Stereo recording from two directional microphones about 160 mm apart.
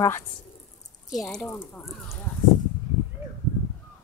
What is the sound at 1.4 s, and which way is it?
Speech, 15° left (ahead or behind).